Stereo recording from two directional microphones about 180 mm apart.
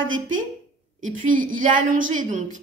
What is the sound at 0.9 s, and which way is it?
Speech, 45° right (ahead or behind).